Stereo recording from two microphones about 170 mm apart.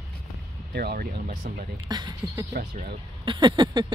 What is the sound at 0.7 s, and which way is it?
Speech, 65° right (ahead or behind).